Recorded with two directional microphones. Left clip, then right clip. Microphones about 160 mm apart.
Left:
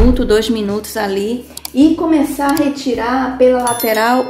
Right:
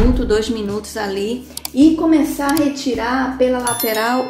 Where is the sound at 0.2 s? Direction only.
30° left (ahead or behind).